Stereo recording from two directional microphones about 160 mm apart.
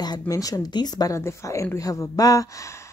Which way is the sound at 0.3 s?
20° left (ahead or behind).